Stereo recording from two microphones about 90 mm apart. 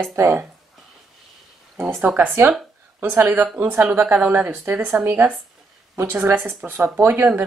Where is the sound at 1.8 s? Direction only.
15° right (ahead or behind).